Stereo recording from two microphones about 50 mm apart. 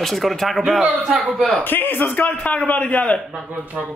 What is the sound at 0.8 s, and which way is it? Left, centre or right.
Speech, centre.